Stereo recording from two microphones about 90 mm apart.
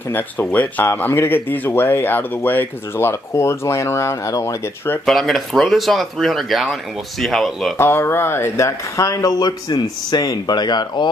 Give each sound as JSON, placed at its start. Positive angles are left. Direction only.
{"t": 0.1, "sound": "speech", "side_deg": 20}
{"t": 5.0, "sound": "speech", "side_deg": 0}
{"t": 7.7, "sound": "speech", "side_deg": 30}